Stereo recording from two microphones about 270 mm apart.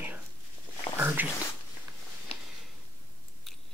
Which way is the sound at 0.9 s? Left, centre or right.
Centre.